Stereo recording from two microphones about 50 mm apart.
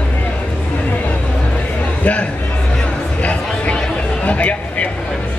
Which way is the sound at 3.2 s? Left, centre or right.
Left.